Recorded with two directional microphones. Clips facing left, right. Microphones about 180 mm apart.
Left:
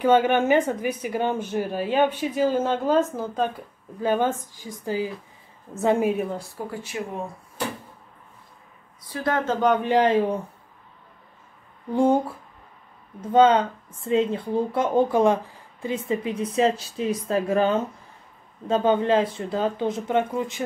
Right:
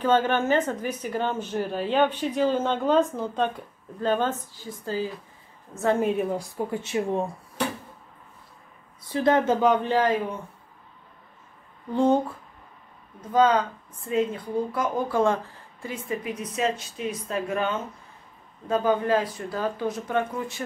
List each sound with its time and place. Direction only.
0.0 s a woman's voice: 15° left (ahead or behind)
6.3 s speech: 20° right (ahead or behind)
9.1 s speech: 20° right (ahead or behind)
9.8 s a woman's voice: 15° left (ahead or behind)
11.9 s a woman's voice: 10° left (ahead or behind)
13.3 s speech: 25° left (ahead or behind)